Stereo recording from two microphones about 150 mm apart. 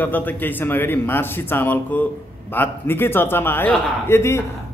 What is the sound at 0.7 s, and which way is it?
A man's voice, 15° left (ahead or behind).